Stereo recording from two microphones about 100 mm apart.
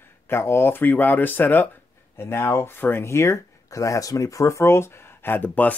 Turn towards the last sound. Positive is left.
turn(degrees=15)  # may be behind; listen again after turning